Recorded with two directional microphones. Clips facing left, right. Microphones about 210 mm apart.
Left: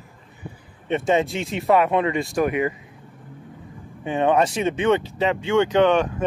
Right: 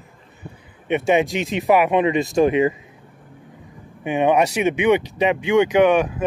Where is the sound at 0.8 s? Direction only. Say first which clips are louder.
Right 2 dB; 15° right (ahead or behind).